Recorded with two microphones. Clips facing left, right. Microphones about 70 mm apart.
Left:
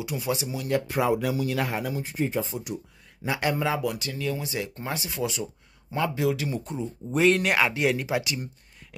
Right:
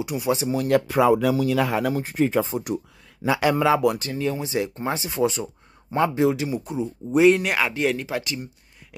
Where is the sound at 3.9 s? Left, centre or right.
Right.